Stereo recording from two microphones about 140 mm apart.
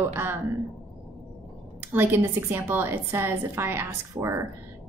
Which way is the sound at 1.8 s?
15° right (ahead or behind).